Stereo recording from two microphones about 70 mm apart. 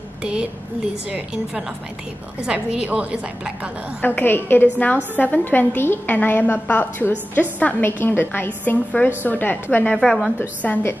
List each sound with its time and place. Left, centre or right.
0.2 s a woman's voice: centre
2.5 s a woman's voice: centre
4.0 s a woman's voice: left
9.9 s a woman's voice: centre
10.6 s a woman's voice: left